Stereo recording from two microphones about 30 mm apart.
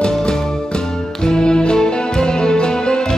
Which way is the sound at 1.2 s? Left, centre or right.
Left.